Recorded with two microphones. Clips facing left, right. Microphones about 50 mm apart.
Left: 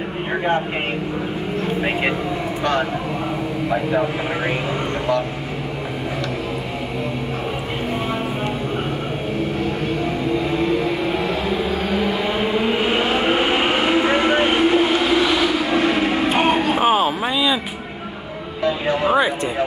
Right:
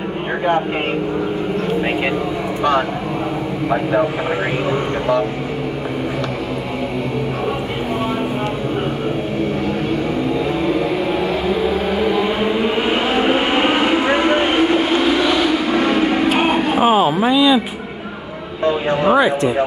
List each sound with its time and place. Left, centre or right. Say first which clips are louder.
3.6 s a man's voice: right 4 dB; centre
11.6 s chant: right 3 dB; centre
16.9 s a sound: right 5 dB; right